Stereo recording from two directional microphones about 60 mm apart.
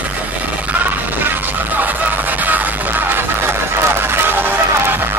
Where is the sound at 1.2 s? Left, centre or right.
Right.